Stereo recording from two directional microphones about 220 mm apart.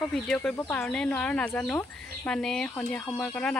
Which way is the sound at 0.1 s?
5° left (ahead or behind).